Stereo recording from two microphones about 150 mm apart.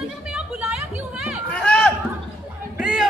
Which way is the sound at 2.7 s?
10° right (ahead or behind).